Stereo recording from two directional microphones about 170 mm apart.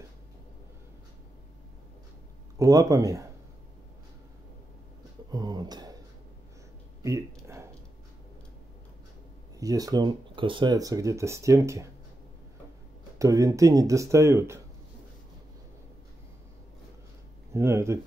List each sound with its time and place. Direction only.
2.6 s speech: 20° right (ahead or behind)
5.3 s a sound: 25° right (ahead or behind)
7.0 s a sound: 20° right (ahead or behind)
9.6 s speech: 20° right (ahead or behind)
13.2 s speech: 20° right (ahead or behind)
17.6 s speech: 15° right (ahead or behind)